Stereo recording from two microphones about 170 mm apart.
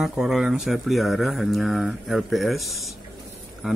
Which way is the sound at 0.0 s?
Centre (ahead or behind).